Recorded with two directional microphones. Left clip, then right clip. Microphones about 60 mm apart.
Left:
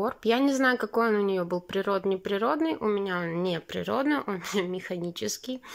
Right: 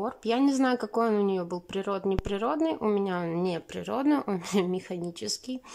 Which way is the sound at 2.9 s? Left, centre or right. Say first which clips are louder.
Even; right.